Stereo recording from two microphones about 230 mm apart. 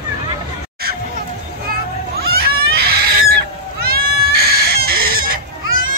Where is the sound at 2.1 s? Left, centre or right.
Right.